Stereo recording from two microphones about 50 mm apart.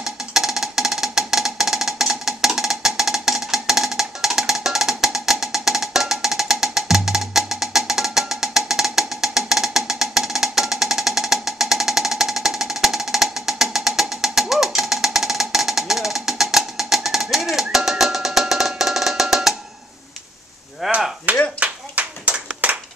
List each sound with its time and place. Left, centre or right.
0.0 s music: centre
20.8 s chop: centre
21.5 s clapping: right